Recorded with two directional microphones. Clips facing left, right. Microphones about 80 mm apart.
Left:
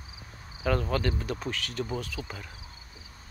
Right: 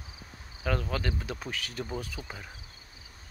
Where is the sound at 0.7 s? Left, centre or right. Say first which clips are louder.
Left 4 dB; centre.